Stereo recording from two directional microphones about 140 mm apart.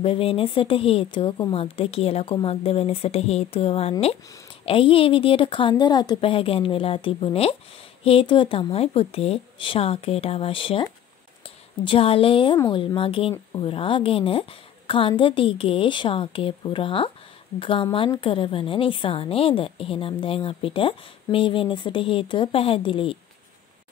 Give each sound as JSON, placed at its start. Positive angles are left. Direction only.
{"t": 0.0, "sound": "a woman's voice", "side_deg": 40}